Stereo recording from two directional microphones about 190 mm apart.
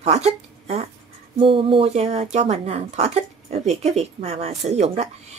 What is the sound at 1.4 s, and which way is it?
Speech, 30° right (ahead or behind).